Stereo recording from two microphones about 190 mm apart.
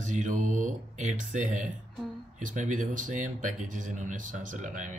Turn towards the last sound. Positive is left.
turn(degrees=-40)  # may be behind; listen again after turning